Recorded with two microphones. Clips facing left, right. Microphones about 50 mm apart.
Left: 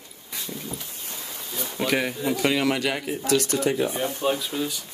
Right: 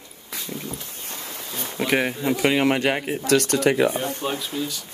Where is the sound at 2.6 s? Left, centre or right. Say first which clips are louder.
Right 4 dB; right.